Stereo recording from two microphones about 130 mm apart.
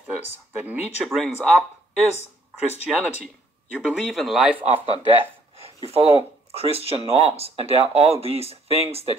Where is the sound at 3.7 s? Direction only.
Centre (ahead or behind).